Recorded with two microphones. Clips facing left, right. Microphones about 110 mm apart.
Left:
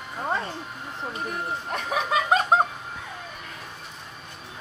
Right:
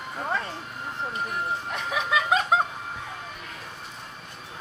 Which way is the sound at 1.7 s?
45° left (ahead or behind).